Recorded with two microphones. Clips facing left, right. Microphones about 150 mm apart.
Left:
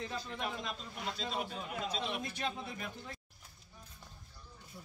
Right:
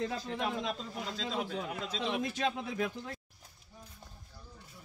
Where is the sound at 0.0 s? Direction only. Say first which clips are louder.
Right 5 dB; 75° right (ahead or behind).